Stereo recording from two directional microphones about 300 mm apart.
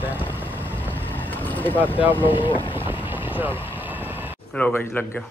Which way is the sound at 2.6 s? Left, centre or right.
Centre.